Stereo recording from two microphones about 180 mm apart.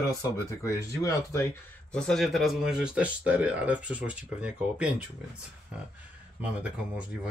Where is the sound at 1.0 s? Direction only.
15° left (ahead or behind).